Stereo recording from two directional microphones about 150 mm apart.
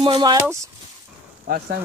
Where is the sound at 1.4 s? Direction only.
90° right.